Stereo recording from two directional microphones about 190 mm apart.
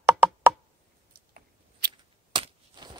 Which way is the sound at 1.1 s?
55° right (ahead or behind).